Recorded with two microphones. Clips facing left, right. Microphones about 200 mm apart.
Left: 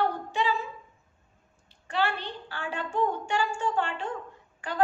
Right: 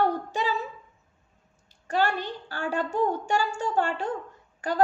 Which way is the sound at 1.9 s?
40° right (ahead or behind).